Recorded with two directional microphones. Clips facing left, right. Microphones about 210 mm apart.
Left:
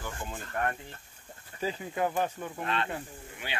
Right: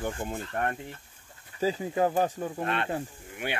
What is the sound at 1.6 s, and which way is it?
Speech, 35° right (ahead or behind).